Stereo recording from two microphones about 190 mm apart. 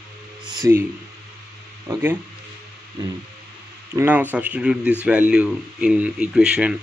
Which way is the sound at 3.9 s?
10° right (ahead or behind).